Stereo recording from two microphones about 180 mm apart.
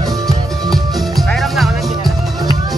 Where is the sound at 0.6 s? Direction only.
Centre (ahead or behind).